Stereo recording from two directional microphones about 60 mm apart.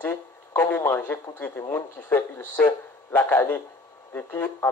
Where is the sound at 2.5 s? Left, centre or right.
Left.